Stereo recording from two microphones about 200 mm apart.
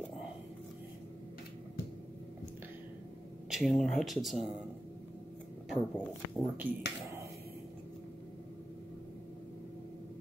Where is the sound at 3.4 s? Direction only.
Centre (ahead or behind).